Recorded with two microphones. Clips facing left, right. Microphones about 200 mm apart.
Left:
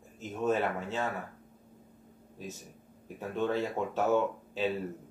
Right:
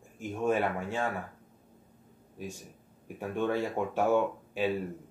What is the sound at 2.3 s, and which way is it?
Speech, 15° right (ahead or behind).